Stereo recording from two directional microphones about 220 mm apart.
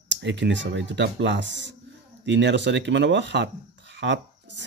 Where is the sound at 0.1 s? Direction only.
55° right (ahead or behind).